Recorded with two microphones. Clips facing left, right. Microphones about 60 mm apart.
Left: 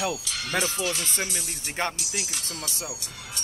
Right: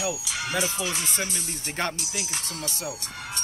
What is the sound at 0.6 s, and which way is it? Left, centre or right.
Speech, right.